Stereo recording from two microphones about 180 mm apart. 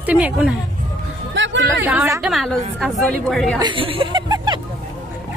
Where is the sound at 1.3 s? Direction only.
90° right.